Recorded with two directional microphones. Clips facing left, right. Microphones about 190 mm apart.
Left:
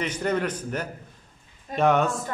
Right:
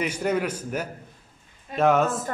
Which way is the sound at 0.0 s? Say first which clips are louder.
Right 1 dB; 10° right (ahead or behind).